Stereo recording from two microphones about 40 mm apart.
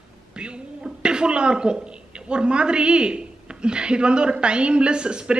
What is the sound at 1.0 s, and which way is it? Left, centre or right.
A man's voice, right.